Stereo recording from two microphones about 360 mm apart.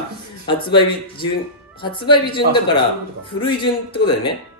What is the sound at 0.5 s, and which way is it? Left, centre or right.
Speech, centre.